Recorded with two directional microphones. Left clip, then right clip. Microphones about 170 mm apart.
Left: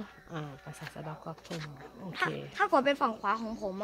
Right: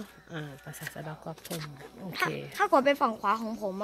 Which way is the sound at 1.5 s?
35° right (ahead or behind).